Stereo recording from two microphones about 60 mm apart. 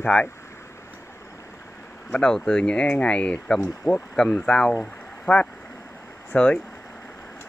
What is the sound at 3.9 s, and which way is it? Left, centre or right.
Speech, left.